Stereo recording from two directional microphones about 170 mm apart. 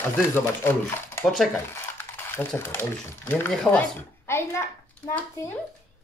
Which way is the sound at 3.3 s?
10° left (ahead or behind).